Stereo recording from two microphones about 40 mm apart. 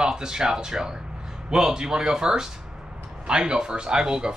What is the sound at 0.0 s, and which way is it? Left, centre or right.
Speech, centre.